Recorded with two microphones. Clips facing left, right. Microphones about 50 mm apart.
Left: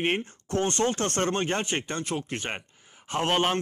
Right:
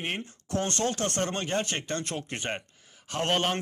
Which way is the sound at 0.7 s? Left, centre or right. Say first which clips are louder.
Left 3 dB; left.